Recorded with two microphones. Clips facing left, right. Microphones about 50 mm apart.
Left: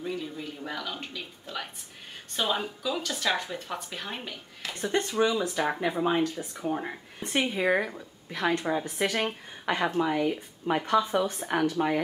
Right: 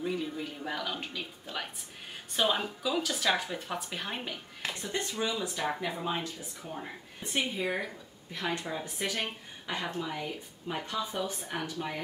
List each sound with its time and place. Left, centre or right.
0.0 s speech: centre
4.8 s a woman's voice: left
5.6 s a woman's voice: left